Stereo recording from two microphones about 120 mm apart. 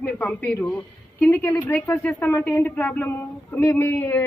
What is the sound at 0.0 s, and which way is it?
A woman's voice, 10° left (ahead or behind).